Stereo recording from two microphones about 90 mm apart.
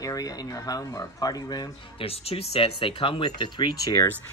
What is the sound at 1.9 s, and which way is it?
Speech, 90° left.